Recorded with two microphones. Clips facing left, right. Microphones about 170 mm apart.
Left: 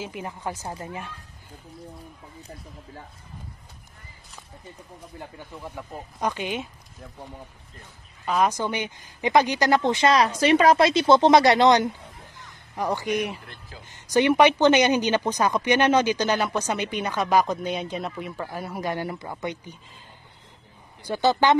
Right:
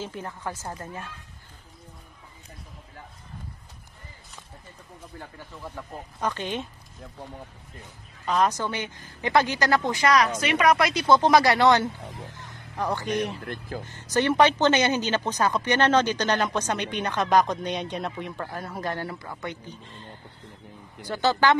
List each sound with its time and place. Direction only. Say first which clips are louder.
0.0 s speech: left 1 dB; 15° left (ahead or behind)
5.2 s speech: left 3 dB; 15° left (ahead or behind)
8.3 s speech: left 1 dB; 10° left (ahead or behind)
21.0 s speech: left 2 dB; 15° left (ahead or behind)